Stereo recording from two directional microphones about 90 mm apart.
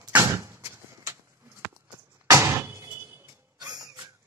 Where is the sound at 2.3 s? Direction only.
25° right (ahead or behind).